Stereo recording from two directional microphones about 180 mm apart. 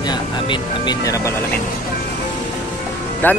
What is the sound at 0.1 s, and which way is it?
Speech, 25° left (ahead or behind).